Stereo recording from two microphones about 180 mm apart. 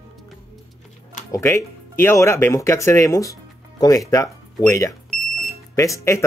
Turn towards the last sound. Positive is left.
turn(degrees=15)  # may be behind; listen again after turning